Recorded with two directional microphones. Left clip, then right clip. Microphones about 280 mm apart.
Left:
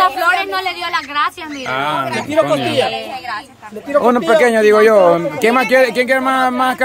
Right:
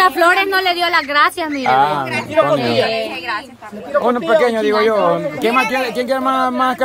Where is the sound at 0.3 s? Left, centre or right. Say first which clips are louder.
Right 2 dB; centre.